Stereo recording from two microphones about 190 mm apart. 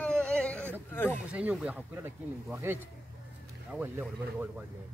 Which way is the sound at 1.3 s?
5° right (ahead or behind).